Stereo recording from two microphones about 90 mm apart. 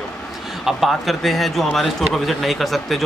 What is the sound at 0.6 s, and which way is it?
Speech, centre (ahead or behind).